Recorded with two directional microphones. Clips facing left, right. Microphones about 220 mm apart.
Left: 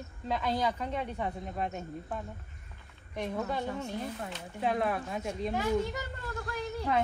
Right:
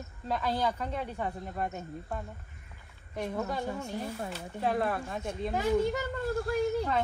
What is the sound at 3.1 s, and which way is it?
A woman's voice, 10° right (ahead or behind).